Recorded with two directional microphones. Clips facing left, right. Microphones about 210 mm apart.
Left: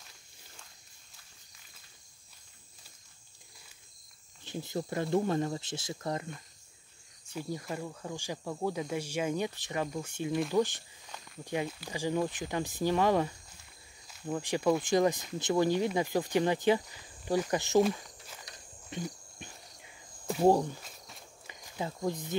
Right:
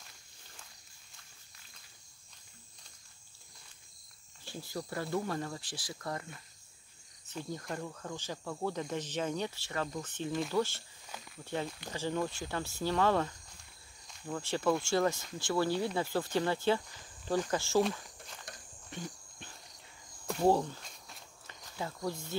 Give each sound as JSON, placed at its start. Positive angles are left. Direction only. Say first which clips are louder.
{"t": 4.5, "sound": "speech", "louder": "left 5 dB", "side_deg": 20}
{"t": 7.2, "sound": "speech", "louder": "left 3 dB", "side_deg": 10}
{"t": 17.8, "sound": "speech", "louder": "left 4 dB", "side_deg": 5}
{"t": 18.9, "sound": "wild animals", "louder": "left 5 dB", "side_deg": 15}
{"t": 20.4, "sound": "speech", "louder": "left 3 dB", "side_deg": 15}